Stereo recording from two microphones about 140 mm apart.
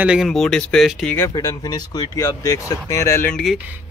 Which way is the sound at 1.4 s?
25° left (ahead or behind).